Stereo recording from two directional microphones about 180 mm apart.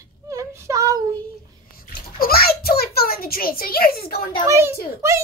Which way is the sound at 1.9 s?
55° left (ahead or behind).